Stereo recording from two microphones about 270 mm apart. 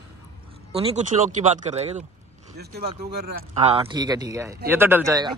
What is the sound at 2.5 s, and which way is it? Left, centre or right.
A man's voice, right.